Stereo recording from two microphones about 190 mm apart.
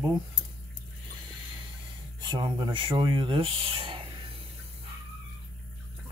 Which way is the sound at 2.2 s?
25° right (ahead or behind).